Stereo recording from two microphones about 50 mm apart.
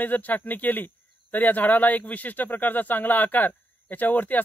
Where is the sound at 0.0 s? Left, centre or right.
Left.